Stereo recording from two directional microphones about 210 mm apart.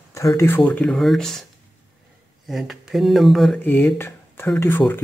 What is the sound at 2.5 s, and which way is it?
Speech, centre (ahead or behind).